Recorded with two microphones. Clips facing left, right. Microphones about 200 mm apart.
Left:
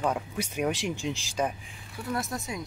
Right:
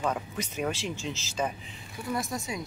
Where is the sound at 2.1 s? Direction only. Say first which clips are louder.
Even; centre (ahead or behind).